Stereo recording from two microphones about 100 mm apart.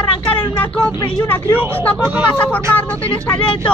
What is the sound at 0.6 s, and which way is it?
Speech, 15° left (ahead or behind).